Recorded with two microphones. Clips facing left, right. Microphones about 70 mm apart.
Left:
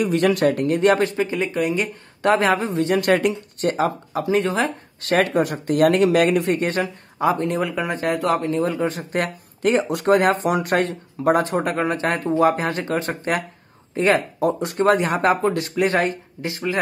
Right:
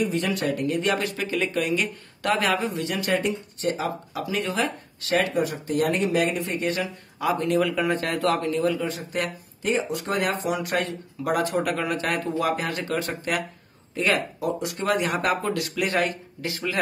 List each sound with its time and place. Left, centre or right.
0.0 s speech: left
3.2 s speech: left
5.0 s speech: left
7.2 s speech: left
9.6 s speech: left
10.1 s speech: left